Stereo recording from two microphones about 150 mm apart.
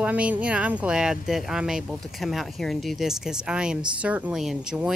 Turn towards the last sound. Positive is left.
turn(degrees=-5)  # may be behind; listen again after turning